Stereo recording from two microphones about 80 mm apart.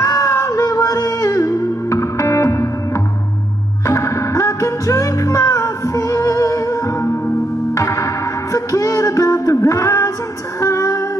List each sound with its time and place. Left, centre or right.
0.0 s music: left